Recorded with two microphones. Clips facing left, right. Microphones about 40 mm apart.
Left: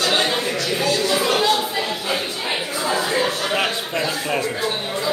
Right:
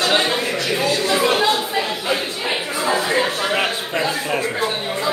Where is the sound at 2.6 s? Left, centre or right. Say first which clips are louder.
Right 3 dB; right.